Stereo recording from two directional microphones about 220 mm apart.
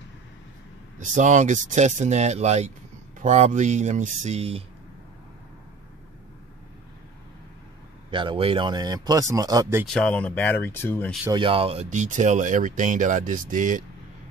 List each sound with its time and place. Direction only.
0.9 s speech: 35° right (ahead or behind)
8.1 s speech: 20° right (ahead or behind)
9.8 s speech: 5° left (ahead or behind)
11.2 s speech: 20° right (ahead or behind)